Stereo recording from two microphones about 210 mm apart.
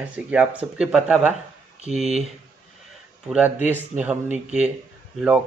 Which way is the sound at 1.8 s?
30° right (ahead or behind).